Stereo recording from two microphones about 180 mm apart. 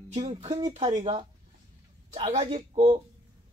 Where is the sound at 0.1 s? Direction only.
35° right (ahead or behind).